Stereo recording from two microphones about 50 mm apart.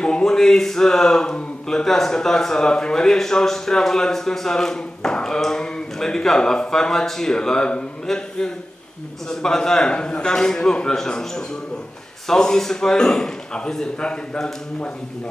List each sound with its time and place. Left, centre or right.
0.0 s a man's voice: centre